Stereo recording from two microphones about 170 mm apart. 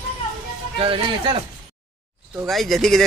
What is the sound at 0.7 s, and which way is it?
Speech, 30° right (ahead or behind).